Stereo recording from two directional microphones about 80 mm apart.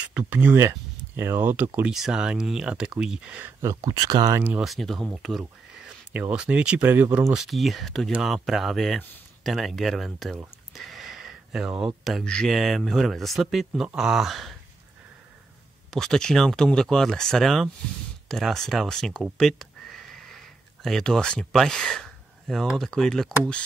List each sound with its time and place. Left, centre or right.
0.3 s speech: right
1.9 s speech: centre
3.6 s speech: right
4.6 s speech: centre
5.9 s speech: centre
7.3 s speech: centre
10.7 s a sound: centre
12.4 s speech: centre
15.9 s speech: centre